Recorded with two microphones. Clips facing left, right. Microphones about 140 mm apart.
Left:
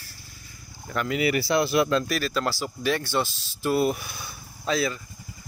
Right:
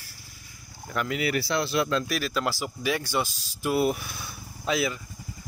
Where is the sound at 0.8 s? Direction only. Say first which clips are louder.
Left 3 dB; centre (ahead or behind).